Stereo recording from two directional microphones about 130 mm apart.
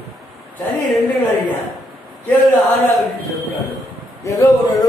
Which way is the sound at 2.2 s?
15° left (ahead or behind).